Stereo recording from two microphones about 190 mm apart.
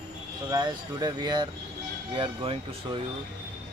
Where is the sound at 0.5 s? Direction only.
20° right (ahead or behind).